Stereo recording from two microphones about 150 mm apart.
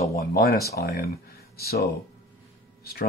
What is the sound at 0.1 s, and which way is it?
Speech, 85° left.